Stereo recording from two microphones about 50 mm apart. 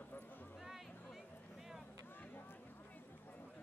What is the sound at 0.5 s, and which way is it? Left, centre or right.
Music, centre.